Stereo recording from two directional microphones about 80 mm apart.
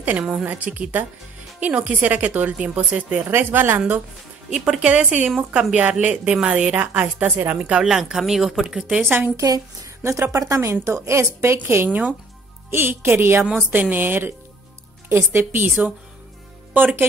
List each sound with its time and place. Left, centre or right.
0.2 s a woman's voice: centre
0.5 s a woman's voice: right
3.3 s a woman's voice: right
4.5 s a woman's voice: centre
10.0 s a woman's voice: right
16.7 s speech: right